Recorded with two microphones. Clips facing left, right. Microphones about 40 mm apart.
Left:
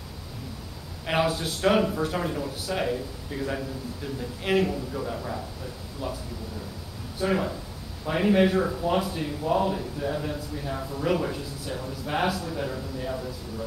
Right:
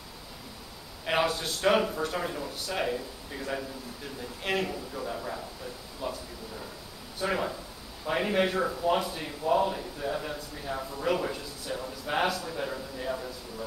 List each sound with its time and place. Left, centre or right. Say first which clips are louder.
1.0 s speech: left 2 dB; centre